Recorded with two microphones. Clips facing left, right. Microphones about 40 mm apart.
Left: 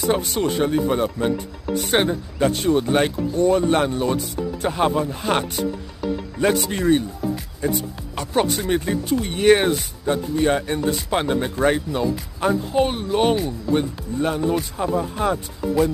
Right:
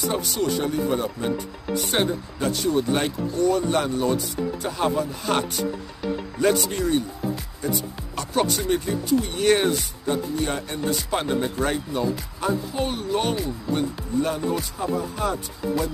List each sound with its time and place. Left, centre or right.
0.1 s speech: left